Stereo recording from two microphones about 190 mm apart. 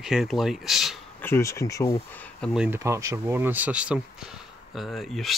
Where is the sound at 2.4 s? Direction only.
5° right (ahead or behind).